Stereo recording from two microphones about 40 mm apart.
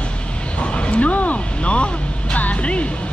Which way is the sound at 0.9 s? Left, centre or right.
Left.